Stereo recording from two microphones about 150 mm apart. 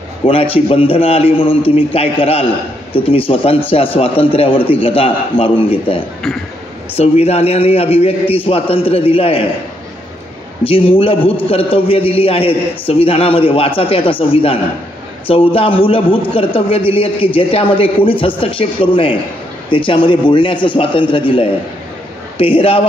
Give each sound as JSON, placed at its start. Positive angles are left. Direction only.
{"t": 0.2, "sound": "a man's voice", "side_deg": 40}
{"t": 10.6, "sound": "a man's voice", "side_deg": 40}